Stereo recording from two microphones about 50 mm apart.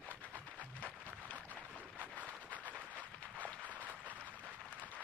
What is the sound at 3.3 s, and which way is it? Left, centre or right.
Applause, right.